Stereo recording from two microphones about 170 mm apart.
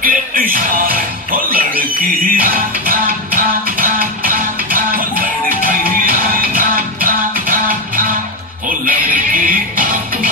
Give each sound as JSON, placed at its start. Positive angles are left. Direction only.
{"t": 0.0, "sound": "music", "side_deg": -60}